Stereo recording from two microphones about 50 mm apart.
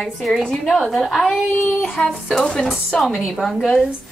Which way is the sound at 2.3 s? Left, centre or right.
Centre.